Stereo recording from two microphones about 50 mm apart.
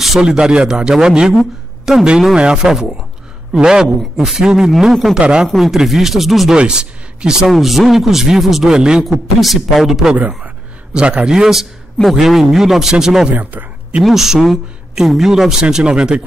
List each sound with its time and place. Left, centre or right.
0.2 s speech: centre
2.0 s speech: centre
4.0 s speech: centre
4.4 s speech: centre
5.2 s speech: centre
5.5 s speech: centre
6.5 s speech: centre
7.4 s speech: centre
9.0 s speech: centre
10.4 s a sound: right
11.2 s speech: centre
13.3 s speech: right
14.0 s speech: centre
15.6 s speech: centre